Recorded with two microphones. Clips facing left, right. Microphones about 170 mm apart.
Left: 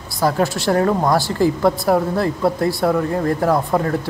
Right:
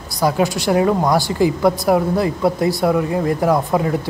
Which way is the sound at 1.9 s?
10° right (ahead or behind).